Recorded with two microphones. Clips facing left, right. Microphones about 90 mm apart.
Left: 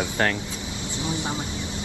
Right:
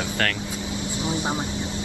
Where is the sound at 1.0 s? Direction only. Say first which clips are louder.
Right 2 dB; 20° right (ahead or behind).